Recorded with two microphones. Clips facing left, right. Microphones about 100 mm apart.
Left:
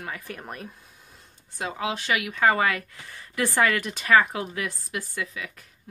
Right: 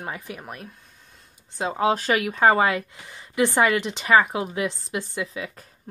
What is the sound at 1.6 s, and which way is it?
Speech, 30° right (ahead or behind).